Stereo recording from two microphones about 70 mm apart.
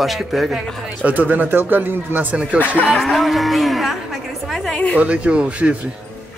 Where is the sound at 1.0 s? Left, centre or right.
Right.